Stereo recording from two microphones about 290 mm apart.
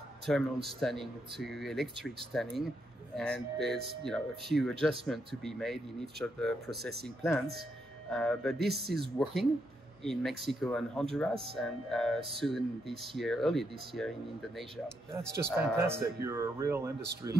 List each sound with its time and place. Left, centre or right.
0.3 s speech: centre
6.8 s speech: right
8.1 s speech: centre
15.1 s speech: centre